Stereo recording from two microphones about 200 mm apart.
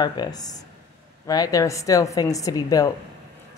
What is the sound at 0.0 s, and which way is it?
Speech, 20° left (ahead or behind).